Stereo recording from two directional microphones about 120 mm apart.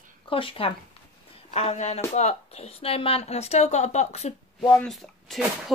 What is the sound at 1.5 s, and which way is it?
Speech, 65° left (ahead or behind).